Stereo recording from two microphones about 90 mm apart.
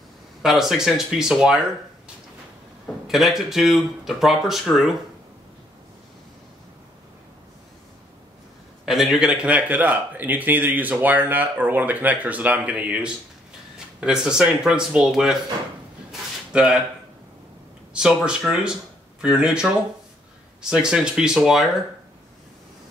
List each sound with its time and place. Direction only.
0.4 s speech: 5° right (ahead or behind)
3.1 s speech: centre (ahead or behind)
8.8 s speech: 5° right (ahead or behind)
16.1 s a sound: 10° right (ahead or behind)
17.9 s speech: 10° right (ahead or behind)
20.7 s speech: 10° right (ahead or behind)